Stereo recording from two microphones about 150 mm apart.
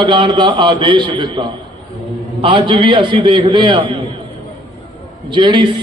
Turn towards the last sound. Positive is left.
turn(degrees=-30)  # may be behind; listen again after turning